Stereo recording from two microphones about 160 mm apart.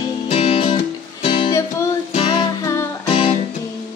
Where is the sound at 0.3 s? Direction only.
40° left (ahead or behind).